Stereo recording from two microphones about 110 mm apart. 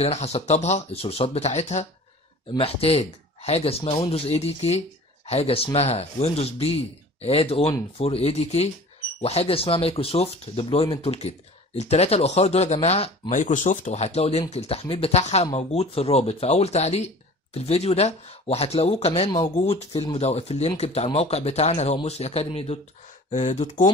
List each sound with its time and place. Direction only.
0.0 s speech: 75° left (ahead or behind)
2.5 s speech: 60° left (ahead or behind); by 8.6 s 75° left (ahead or behind)
9.2 s speech: 65° left (ahead or behind)
13.8 s speech: 90° left; by 22.8 s 65° left (ahead or behind)
23.3 s speech: 90° left